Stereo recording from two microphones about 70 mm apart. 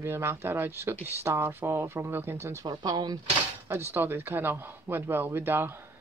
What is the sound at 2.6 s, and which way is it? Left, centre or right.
Speech, right.